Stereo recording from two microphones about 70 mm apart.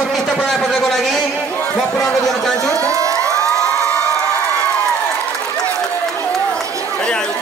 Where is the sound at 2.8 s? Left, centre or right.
Right.